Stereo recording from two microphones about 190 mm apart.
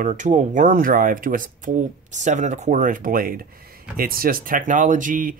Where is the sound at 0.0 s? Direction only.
40° right (ahead or behind).